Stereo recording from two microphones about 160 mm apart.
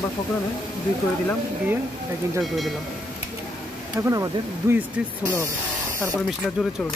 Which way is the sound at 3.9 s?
20° right (ahead or behind).